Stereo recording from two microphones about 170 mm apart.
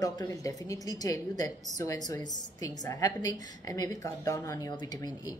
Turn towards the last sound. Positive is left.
turn(degrees=25)  # may be behind; listen again after turning